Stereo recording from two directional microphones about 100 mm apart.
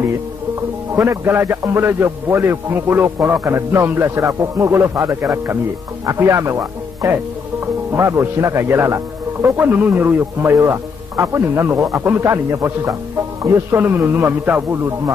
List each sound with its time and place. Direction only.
0.6 s a man's voice: 30° right (ahead or behind)